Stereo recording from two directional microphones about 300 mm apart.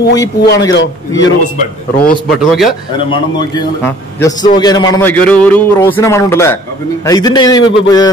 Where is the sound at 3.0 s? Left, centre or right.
Centre.